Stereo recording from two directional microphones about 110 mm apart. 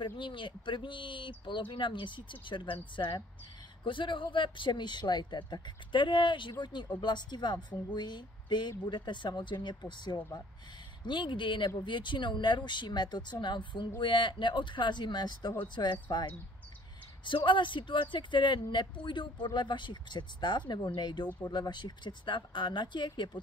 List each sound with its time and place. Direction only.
0.0 s speech: 50° left (ahead or behind)
3.8 s speech: 50° left (ahead or behind)
17.5 s speech: 45° left (ahead or behind)